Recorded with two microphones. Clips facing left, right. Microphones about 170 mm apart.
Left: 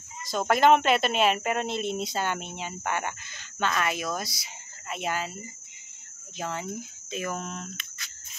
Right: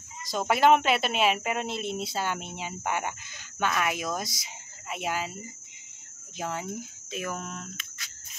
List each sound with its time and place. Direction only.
0.2 s speech: 10° right (ahead or behind)
6.3 s cricket: 10° right (ahead or behind)